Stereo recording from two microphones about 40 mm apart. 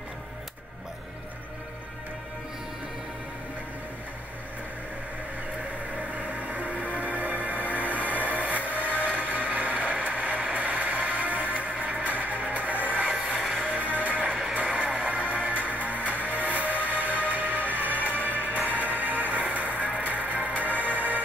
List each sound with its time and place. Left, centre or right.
5.9 s a sound: right
7.0 s music: right
8.8 s a sound: right
13.0 s music: right
13.5 s music: centre
13.7 s music: right